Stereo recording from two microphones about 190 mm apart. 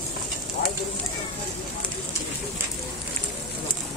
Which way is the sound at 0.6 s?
50° left (ahead or behind).